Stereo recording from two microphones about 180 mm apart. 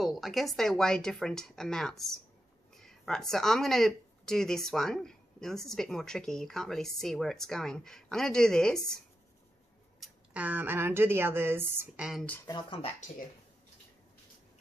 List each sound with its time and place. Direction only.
0.0 s speech: centre (ahead or behind)
12.4 s speech: 25° left (ahead or behind)